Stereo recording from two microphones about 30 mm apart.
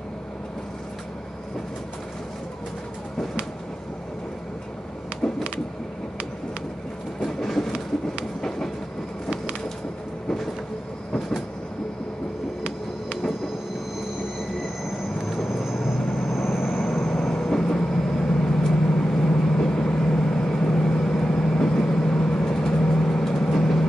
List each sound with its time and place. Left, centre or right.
5.2 s a sound: centre
7.2 s train: centre
15.1 s train: centre
16.3 s vehicle: centre
16.7 s vehicle: left